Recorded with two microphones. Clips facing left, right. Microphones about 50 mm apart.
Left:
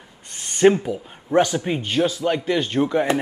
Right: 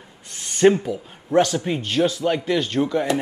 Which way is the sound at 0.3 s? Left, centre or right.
Centre.